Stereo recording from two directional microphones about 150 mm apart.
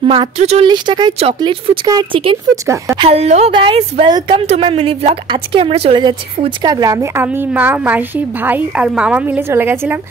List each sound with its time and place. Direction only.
0.0 s speech: 35° right (ahead or behind)
0.7 s speech: 30° right (ahead or behind)
2.5 s speech: 20° right (ahead or behind)
3.0 s a woman's voice: 45° right (ahead or behind); by 9.9 s 15° right (ahead or behind)